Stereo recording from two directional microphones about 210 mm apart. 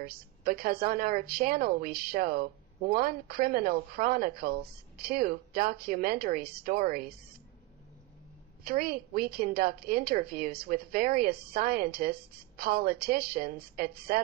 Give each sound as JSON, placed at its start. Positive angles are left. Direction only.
{"t": 0.0, "sound": "a woman's voice", "side_deg": -45}
{"t": 8.6, "sound": "a woman's voice", "side_deg": -45}